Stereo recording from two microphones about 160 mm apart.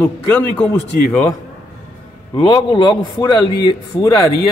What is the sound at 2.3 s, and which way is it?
A man's voice, 30° left (ahead or behind).